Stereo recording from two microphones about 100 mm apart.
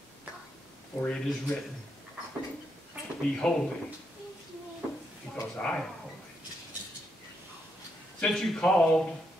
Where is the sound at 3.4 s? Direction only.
10° left (ahead or behind).